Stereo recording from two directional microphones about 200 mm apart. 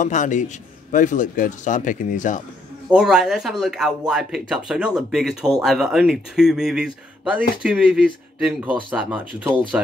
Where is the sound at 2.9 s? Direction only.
5° right (ahead or behind).